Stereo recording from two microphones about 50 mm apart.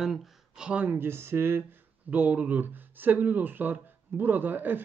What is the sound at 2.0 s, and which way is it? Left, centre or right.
Speech, right.